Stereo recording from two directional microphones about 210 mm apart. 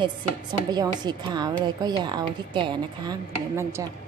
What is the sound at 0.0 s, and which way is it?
Speech, 20° right (ahead or behind).